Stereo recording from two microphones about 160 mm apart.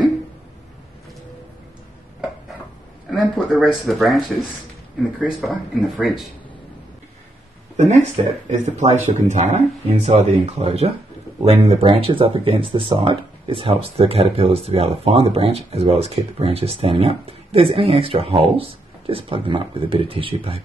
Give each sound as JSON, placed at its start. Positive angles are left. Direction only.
{"t": 3.1, "sound": "speech", "side_deg": -5}
{"t": 7.7, "sound": "speech", "side_deg": -45}